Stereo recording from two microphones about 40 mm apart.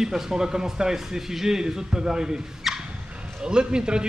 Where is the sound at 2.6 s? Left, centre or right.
Centre.